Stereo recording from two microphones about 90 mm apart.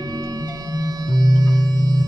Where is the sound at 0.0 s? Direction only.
45° right (ahead or behind).